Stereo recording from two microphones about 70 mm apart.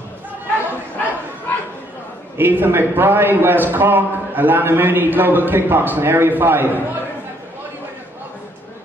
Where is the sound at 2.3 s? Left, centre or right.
Right.